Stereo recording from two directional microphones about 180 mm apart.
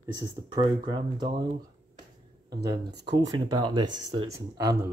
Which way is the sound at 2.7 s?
65° right (ahead or behind).